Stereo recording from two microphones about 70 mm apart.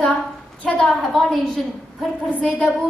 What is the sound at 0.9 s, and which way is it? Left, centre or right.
Speech, centre.